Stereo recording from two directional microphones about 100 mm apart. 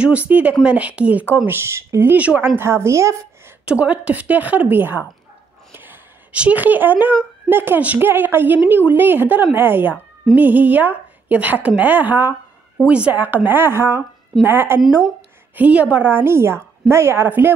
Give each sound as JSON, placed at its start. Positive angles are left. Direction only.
{"t": 0.0, "sound": "a woman's voice", "side_deg": -15}
{"t": 3.6, "sound": "a woman's voice", "side_deg": -15}